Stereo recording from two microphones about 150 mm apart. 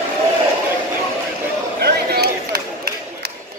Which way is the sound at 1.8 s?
90° right.